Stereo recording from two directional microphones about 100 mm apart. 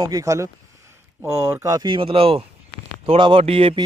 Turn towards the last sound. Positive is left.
turn(degrees=-75)  # may be behind; listen again after turning